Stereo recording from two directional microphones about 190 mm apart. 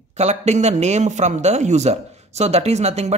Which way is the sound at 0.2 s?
35° right (ahead or behind).